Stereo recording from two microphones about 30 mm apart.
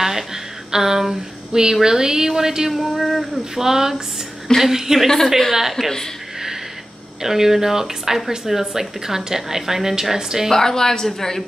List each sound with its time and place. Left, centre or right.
0.0 s speech: centre
2.7 s speech: centre
3.5 s speech: centre
4.5 s a woman's voice: left
5.0 s a woman's voice: centre
5.5 s speech: centre
7.2 s speech: centre
10.5 s a woman's voice: centre